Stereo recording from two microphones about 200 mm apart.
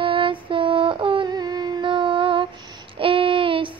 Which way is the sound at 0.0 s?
25° right (ahead or behind).